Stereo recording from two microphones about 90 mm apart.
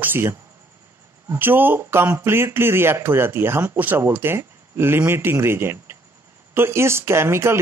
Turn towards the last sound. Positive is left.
turn(degrees=-30)  # may be behind; listen again after turning